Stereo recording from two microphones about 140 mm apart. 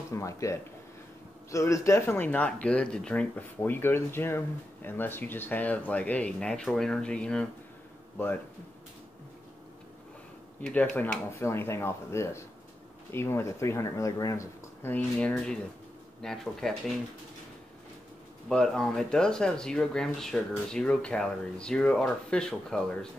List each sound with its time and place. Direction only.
0.1 s speech: 20° left (ahead or behind); by 7.4 s 5° left (ahead or behind)
10.6 s speech: 10° left (ahead or behind)
18.5 s speech: 5° left (ahead or behind)